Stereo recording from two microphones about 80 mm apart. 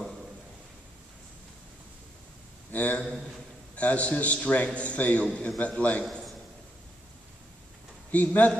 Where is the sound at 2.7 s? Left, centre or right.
Centre.